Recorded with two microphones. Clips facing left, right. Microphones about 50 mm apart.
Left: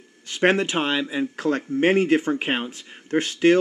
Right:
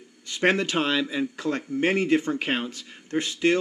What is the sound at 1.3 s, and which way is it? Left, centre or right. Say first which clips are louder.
Speech: left 4 dB; left.